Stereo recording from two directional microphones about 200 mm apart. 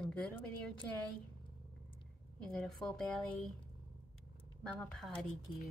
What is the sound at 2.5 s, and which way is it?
Speech, centre (ahead or behind).